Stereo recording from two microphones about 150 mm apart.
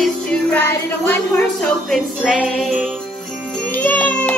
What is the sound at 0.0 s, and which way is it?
Music, 5° left (ahead or behind).